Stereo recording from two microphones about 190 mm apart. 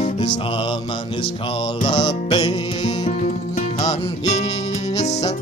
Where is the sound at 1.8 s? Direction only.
25° left (ahead or behind).